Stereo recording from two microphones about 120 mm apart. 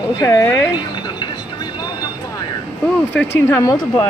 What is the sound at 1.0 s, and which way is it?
Vehicle, 35° left (ahead or behind).